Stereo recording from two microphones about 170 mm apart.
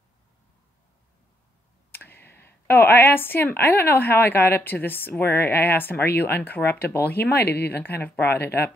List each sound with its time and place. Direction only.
1.9 s a woman's voice: 10° left (ahead or behind)
7.2 s speech: 70° left (ahead or behind)
8.0 s a woman's voice: 10° left (ahead or behind)